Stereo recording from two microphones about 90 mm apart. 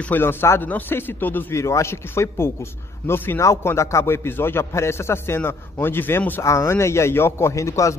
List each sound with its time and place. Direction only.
0.1 s a man's voice: 25° left (ahead or behind)
6.4 s a man's voice: 35° left (ahead or behind)